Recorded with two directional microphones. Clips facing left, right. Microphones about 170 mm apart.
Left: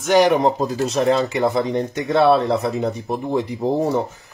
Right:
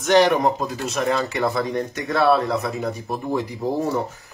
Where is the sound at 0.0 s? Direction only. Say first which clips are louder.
Left 1 dB; 10° left (ahead or behind).